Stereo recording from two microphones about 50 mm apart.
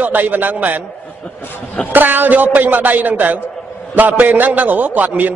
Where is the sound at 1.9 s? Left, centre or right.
Right.